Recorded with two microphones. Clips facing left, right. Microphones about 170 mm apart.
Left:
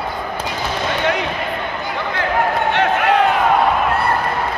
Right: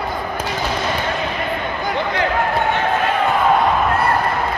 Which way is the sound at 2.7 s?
70° left (ahead or behind).